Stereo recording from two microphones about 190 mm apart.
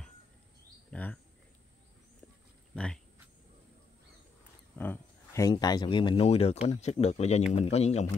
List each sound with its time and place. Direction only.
0.8 s bird: 5° left (ahead or behind)
2.7 s a sound: 5° left (ahead or behind)
4.7 s speech: 10° left (ahead or behind); by 8.1 s 35° left (ahead or behind)